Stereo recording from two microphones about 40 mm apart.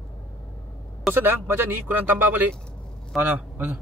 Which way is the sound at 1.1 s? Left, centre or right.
Right.